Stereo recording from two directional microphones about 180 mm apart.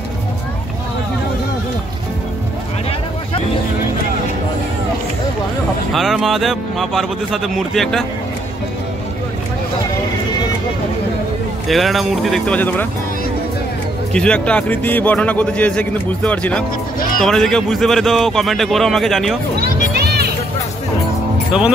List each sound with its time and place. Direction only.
5.9 s a man's voice: centre (ahead or behind)
11.6 s a man's voice: centre (ahead or behind)
14.1 s a man's voice: 5° left (ahead or behind)
20.0 s music: 65° right (ahead or behind)
21.5 s speech: 5° right (ahead or behind)